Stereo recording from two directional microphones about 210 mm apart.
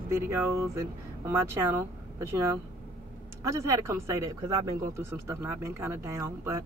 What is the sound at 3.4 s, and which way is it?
Speech, 15° right (ahead or behind).